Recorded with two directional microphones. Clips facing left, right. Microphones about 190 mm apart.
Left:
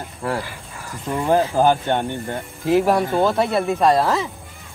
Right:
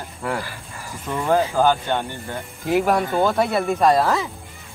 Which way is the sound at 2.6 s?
Centre (ahead or behind).